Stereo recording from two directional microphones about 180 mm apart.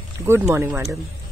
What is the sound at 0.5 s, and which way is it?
Speech, 15° right (ahead or behind).